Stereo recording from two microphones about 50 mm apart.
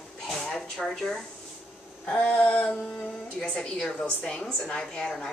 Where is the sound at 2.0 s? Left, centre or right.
Left.